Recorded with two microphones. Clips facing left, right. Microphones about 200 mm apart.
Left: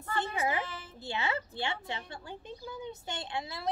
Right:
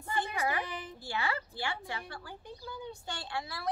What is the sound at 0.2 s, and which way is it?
Speech, 20° left (ahead or behind).